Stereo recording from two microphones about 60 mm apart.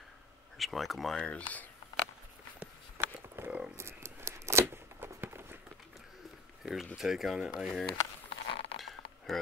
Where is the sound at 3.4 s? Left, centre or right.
Right.